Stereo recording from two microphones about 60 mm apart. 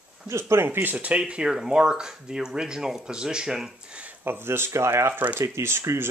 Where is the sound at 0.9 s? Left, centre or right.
Centre.